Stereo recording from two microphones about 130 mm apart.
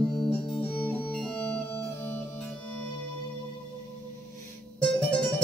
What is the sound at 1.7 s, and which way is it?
Music, 20° left (ahead or behind).